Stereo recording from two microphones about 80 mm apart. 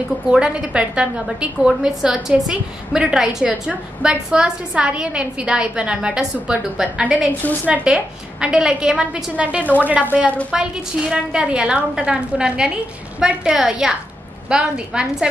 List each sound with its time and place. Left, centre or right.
0.3 s a woman's voice: centre
7.9 s a woman's voice: centre